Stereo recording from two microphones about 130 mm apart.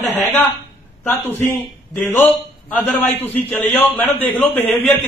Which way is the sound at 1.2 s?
15° left (ahead or behind).